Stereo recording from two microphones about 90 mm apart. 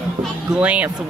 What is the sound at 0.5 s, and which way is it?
Speech, 15° right (ahead or behind).